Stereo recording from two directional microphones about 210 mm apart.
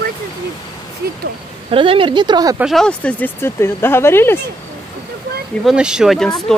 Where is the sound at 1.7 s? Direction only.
25° right (ahead or behind).